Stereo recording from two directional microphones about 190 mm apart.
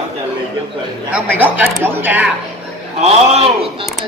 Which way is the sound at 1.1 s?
10° right (ahead or behind).